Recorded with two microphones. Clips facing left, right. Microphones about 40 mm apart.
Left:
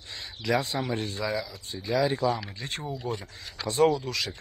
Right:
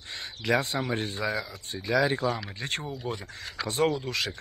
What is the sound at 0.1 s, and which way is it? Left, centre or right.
Speech, right.